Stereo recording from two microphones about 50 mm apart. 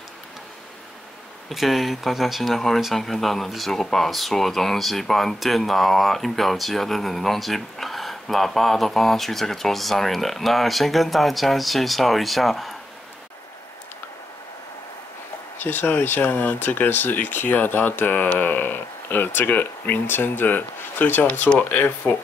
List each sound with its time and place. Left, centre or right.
1.5 s speech: centre
15.6 s speech: left